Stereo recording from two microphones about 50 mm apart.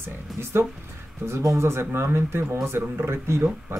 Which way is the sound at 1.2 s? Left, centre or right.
Right.